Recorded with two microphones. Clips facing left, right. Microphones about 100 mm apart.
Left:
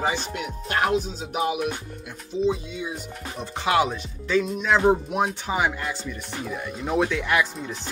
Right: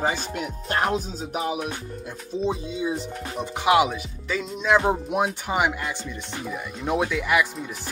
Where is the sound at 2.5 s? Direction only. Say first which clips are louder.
Even; 35° right (ahead or behind).